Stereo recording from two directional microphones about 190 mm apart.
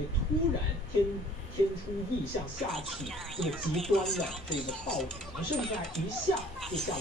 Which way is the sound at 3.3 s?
Centre (ahead or behind).